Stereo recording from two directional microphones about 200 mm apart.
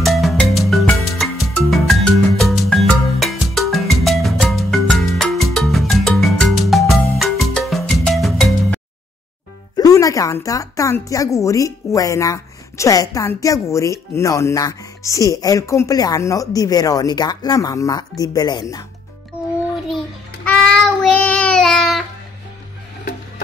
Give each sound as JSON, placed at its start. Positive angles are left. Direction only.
{"t": 0.0, "sound": "music", "side_deg": 0}
{"t": 9.8, "sound": "a woman's voice", "side_deg": 15}
{"t": 20.4, "sound": "child singing", "side_deg": 5}